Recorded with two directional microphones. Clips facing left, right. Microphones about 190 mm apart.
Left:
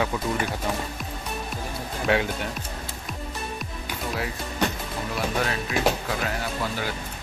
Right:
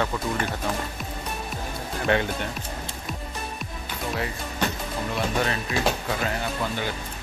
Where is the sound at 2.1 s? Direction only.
5° left (ahead or behind).